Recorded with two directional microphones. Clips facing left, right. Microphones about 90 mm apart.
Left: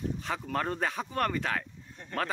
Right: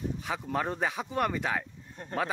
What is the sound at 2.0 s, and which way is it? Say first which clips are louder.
Speech: right 6 dB; 45° right (ahead or behind).